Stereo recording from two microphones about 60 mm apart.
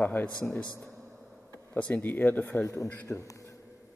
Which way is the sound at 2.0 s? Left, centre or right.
Left.